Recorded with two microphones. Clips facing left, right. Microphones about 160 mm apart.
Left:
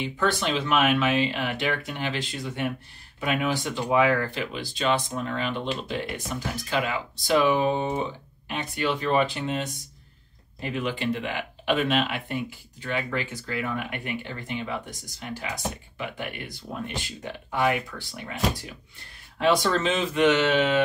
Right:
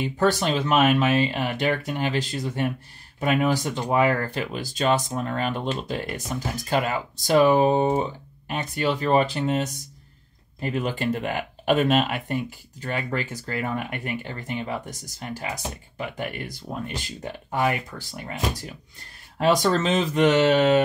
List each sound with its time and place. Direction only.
0.0 s speech: 45° right (ahead or behind)
19.3 s speech: 45° right (ahead or behind)